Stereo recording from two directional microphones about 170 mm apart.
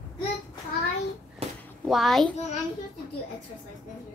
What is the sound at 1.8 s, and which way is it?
Speech, centre (ahead or behind).